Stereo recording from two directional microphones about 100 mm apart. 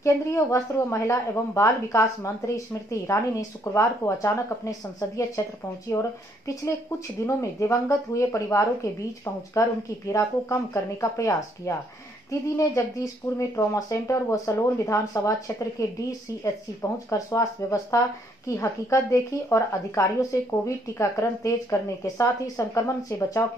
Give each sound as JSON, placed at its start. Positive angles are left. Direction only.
{"t": 0.0, "sound": "speech", "side_deg": 30}